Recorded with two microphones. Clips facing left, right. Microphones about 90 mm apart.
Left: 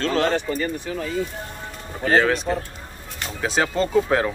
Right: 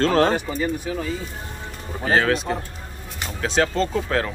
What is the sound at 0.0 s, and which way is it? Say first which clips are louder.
Speech: right 4 dB; 45° right (ahead or behind).